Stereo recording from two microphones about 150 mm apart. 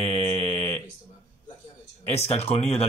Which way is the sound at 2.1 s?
45° left (ahead or behind).